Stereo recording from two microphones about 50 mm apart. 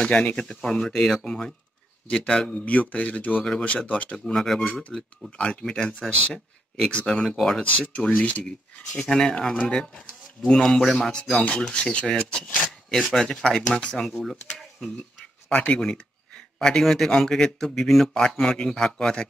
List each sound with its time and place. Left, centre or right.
0.0 s speech: left
4.3 s speech: centre
5.4 s speech: left
8.2 s speech: left
9.0 s speech: centre
11.6 s speech: centre
15.5 s a man's voice: left